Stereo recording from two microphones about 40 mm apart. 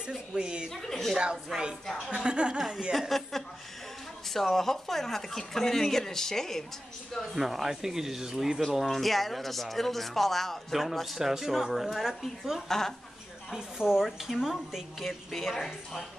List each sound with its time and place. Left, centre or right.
0.0 s a woman's voice: centre
0.7 s speech: centre
1.5 s speech: centre
2.0 s a woman's voice: right
2.9 s speech: centre
7.2 s speech: centre
8.7 s speech: centre
10.7 s speech: centre
12.6 s speech: centre
13.6 s speech: centre
15.0 s speech: centre